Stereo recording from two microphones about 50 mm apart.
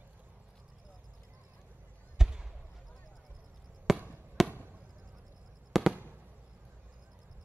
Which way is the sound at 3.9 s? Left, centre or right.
Centre.